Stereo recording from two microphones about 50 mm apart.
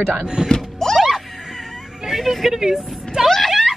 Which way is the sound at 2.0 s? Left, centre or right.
Centre.